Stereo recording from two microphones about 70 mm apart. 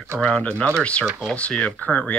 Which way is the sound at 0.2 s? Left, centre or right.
Centre.